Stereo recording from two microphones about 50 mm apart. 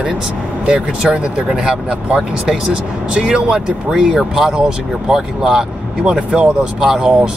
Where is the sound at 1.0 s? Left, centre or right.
Centre.